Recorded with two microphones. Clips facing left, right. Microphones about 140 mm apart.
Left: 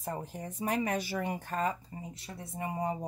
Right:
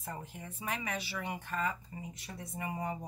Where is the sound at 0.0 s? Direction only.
35° left (ahead or behind).